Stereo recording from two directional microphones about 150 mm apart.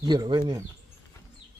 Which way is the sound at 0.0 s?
30° right (ahead or behind).